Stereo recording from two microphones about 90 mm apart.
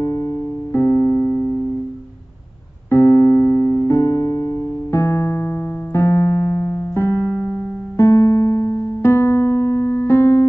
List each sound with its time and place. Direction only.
0.0 s music: 35° left (ahead or behind)
2.9 s keyboard: 30° left (ahead or behind)